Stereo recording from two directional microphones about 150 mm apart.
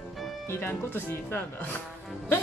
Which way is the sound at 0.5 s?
15° left (ahead or behind).